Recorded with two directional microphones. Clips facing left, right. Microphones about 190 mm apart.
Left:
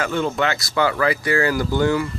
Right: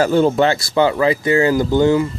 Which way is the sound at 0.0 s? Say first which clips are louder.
Right 8 dB; 35° right (ahead or behind).